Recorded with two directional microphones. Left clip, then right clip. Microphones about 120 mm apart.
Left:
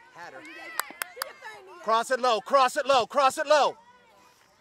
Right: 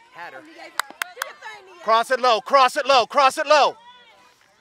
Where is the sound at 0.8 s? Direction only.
35° right (ahead or behind).